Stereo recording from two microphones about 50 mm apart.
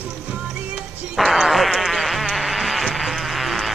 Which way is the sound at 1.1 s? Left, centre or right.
Centre.